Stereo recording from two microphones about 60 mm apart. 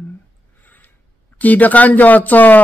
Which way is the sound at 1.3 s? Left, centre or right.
Left.